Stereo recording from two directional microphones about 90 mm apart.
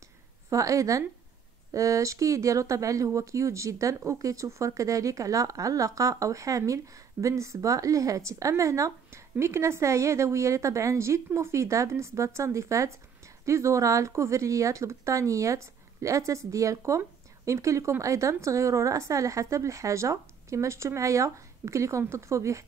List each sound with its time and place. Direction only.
0.5 s speech: 35° right (ahead or behind)